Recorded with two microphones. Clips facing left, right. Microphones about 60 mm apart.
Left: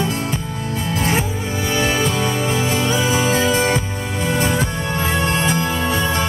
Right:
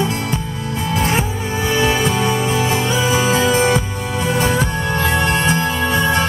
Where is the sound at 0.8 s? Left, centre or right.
Right.